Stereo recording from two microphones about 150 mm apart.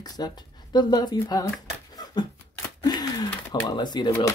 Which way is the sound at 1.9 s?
25° left (ahead or behind).